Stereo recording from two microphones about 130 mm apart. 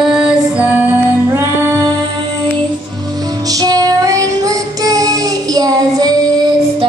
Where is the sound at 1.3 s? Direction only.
20° right (ahead or behind).